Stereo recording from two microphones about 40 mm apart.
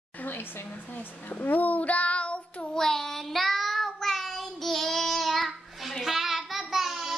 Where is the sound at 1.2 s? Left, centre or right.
Left.